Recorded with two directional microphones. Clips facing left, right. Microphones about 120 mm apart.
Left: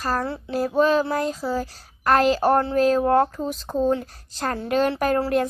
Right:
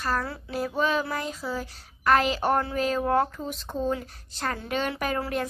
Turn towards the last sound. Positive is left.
turn(degrees=40)  # may be behind; listen again after turning